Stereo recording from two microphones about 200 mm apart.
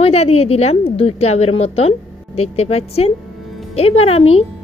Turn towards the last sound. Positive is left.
turn(degrees=30)  # may be behind; listen again after turning